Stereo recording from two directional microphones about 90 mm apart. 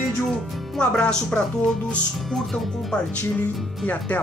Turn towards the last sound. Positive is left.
turn(degrees=20)  # may be behind; listen again after turning